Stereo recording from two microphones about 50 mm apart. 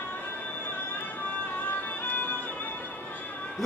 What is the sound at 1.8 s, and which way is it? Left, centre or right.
Music, left.